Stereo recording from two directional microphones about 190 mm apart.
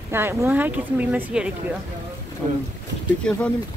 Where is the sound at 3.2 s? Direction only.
5° left (ahead or behind).